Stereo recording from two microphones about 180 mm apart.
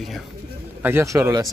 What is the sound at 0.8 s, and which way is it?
Speech, 15° right (ahead or behind).